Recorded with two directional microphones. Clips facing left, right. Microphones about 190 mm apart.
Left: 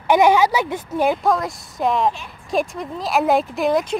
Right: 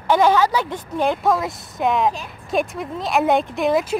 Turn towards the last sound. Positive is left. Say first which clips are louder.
# even
turn(degrees=-5)  # may be behind; listen again after turning